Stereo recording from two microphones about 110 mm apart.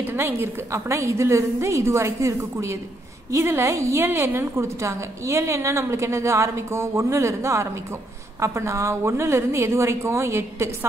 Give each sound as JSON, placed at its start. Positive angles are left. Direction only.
{"t": 0.0, "sound": "a woman's voice", "side_deg": -20}